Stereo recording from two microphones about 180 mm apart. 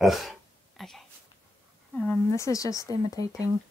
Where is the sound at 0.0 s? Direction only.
Centre (ahead or behind).